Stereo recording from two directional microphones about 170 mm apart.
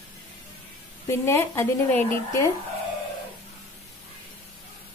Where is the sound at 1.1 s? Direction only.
15° left (ahead or behind).